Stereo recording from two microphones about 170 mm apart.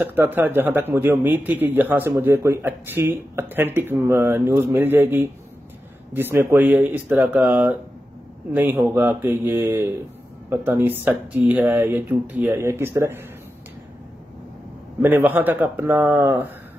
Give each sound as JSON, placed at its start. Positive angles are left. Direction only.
{"t": 0.0, "sound": "a man's voice", "side_deg": -10}
{"t": 15.0, "sound": "a man's voice", "side_deg": -10}